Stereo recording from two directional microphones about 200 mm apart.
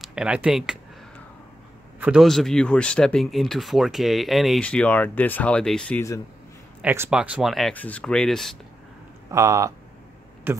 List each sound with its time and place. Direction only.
0.0 s speech: 5° right (ahead or behind)
2.0 s speech: 5° right (ahead or behind); by 6.2 s 10° left (ahead or behind)
6.8 s speech: 10° right (ahead or behind)
9.3 s speech: 15° right (ahead or behind)